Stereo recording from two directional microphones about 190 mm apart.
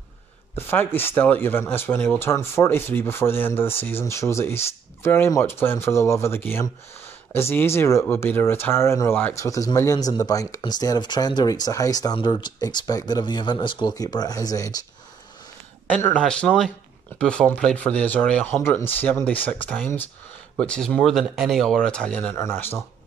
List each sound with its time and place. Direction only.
0.6 s speech: 10° left (ahead or behind)
15.9 s speech: 10° left (ahead or behind)